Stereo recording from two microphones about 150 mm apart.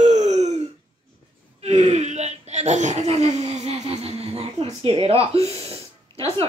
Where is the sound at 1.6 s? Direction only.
45° right (ahead or behind).